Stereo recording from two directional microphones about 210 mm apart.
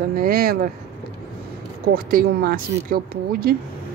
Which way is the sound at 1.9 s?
45° right (ahead or behind).